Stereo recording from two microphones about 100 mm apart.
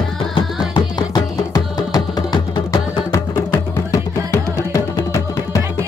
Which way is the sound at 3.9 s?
30° left (ahead or behind).